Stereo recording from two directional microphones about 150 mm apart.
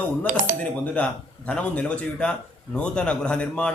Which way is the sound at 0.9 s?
10° left (ahead or behind).